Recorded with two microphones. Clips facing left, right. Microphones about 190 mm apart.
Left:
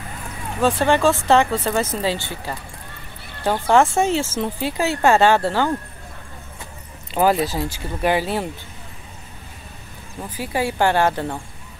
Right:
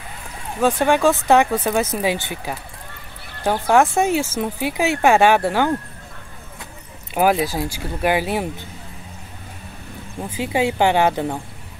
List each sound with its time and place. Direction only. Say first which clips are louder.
0.6 s speech: right 1 dB; 15° right (ahead or behind)
3.8 s speech: right 1 dB; 15° right (ahead or behind)
7.2 s speech: even; 10° right (ahead or behind)
10.3 s speech: right 3 dB; 20° right (ahead or behind)